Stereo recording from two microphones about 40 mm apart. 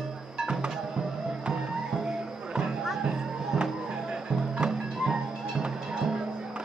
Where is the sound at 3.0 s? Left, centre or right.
Right.